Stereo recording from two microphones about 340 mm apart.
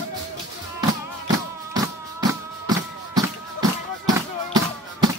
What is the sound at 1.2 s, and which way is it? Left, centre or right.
Music, centre.